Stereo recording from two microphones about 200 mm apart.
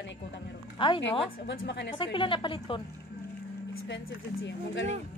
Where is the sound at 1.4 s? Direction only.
60° left (ahead or behind).